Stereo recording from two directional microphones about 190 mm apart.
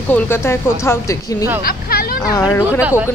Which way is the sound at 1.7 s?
55° left (ahead or behind).